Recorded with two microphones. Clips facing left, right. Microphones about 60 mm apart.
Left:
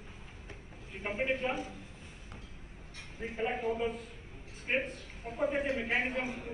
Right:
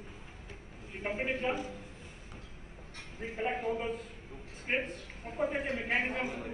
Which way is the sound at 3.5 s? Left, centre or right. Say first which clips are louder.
Left 1 dB; right.